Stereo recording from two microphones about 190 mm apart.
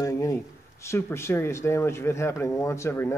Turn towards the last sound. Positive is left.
turn(degrees=15)  # may be behind; listen again after turning